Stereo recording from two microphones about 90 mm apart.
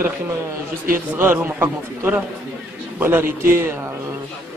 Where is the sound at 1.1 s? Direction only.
20° right (ahead or behind).